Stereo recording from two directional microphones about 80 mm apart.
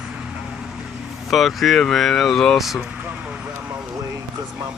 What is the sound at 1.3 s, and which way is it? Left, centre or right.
Speech, centre.